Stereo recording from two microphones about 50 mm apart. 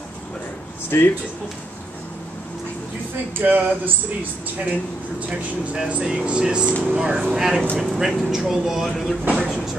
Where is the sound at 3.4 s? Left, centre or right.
Right.